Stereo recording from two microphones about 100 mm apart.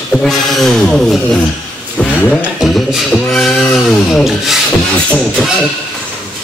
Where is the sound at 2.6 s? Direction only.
Centre (ahead or behind).